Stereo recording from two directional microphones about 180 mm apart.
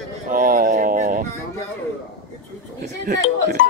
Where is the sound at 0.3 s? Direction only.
50° right (ahead or behind).